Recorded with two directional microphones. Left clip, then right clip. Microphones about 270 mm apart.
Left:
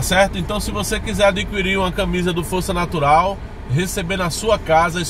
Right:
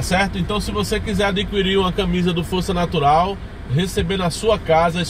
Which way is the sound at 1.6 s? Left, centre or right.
Left.